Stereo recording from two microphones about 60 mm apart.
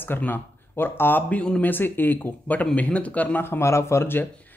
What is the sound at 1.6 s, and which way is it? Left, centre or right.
Speech, left.